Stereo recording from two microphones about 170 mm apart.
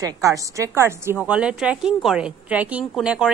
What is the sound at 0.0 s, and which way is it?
A woman's voice, 20° right (ahead or behind).